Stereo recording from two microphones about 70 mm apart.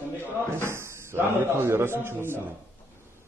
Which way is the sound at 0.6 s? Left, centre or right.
Right.